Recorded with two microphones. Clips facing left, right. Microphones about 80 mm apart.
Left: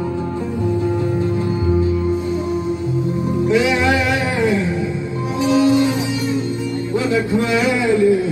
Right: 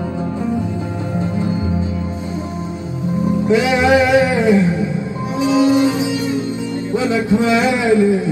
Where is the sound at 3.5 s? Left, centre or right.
Right.